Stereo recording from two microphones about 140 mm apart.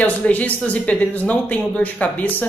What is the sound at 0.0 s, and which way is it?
Speech, 10° left (ahead or behind).